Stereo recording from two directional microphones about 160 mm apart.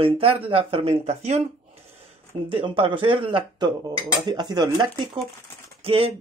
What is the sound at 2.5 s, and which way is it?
A woman's voice, 35° right (ahead or behind).